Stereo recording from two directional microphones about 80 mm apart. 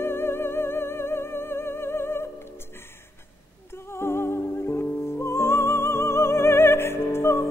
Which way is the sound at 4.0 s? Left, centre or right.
Left.